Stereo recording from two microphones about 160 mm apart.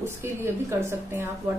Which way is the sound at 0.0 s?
15° right (ahead or behind).